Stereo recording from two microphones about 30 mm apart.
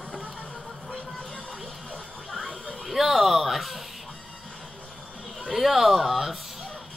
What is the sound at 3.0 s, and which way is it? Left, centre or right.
Speech, centre.